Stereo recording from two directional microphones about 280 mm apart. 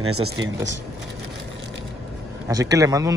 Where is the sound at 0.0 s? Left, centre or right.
Right.